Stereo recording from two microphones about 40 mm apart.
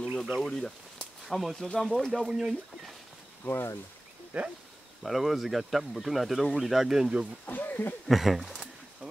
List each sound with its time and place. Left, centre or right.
0.0 s a sound: centre
1.3 s speech: centre
2.1 s speech: centre
3.4 s speech: left
4.3 s speech: right
5.0 s speech: centre
7.4 s speech: left
8.1 s speech: centre